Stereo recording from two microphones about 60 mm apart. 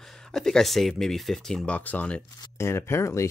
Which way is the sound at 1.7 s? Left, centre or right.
Left.